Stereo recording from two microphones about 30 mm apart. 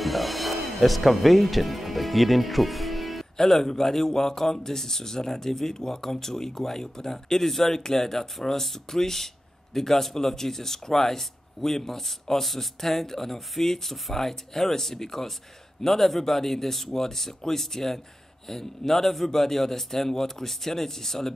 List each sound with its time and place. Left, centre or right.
0.0 s music: centre
3.3 s speech: centre